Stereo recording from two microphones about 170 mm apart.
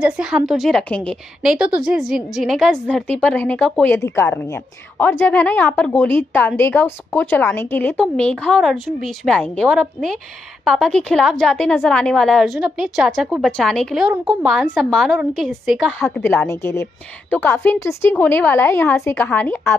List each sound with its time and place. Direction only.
0.0 s a woman's voice: 5° right (ahead or behind)
16.0 s a woman's voice: 15° left (ahead or behind)